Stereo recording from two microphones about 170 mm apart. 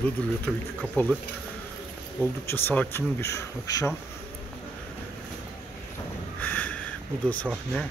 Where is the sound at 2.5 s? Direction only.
10° left (ahead or behind).